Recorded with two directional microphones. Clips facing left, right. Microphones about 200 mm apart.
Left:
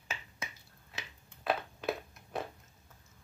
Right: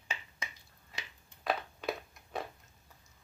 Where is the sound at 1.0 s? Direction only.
5° left (ahead or behind).